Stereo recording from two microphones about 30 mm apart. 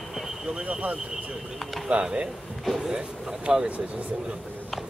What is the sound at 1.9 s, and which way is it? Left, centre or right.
Speech, right.